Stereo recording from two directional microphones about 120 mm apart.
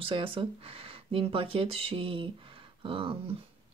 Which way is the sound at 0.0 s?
45° right (ahead or behind).